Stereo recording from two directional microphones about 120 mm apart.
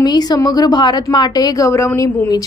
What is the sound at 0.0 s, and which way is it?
A woman's voice, 35° left (ahead or behind).